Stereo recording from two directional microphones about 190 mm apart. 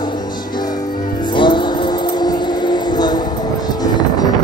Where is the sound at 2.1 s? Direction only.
20° left (ahead or behind).